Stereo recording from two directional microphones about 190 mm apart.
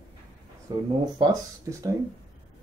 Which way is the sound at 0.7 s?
20° right (ahead or behind).